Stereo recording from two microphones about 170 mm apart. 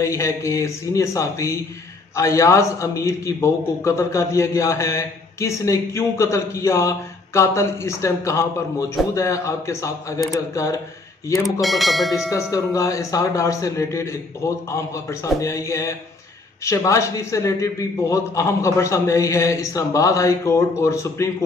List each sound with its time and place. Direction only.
0.0 s a man's voice: 15° left (ahead or behind)
11.6 s speech: centre (ahead or behind)
12.3 s a man's voice: 20° left (ahead or behind)